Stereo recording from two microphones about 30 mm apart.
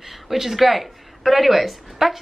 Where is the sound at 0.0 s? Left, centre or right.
Centre.